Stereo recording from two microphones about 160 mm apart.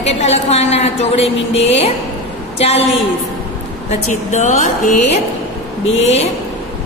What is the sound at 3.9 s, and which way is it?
A woman's voice, 45° left (ahead or behind).